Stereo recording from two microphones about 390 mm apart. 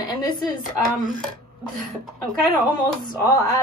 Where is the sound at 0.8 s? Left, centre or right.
Centre.